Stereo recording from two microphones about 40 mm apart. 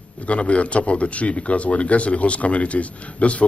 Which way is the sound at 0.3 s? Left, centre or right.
Left.